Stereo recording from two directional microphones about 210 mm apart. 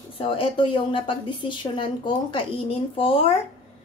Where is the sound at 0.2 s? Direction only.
25° left (ahead or behind).